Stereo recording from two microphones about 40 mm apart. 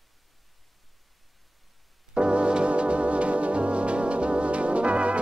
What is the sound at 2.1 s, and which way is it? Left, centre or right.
Organ, right.